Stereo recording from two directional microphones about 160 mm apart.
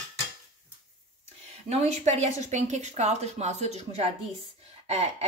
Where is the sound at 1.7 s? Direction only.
40° right (ahead or behind).